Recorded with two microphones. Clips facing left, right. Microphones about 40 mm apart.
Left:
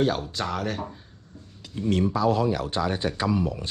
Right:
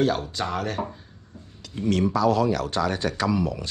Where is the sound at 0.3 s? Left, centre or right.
Centre.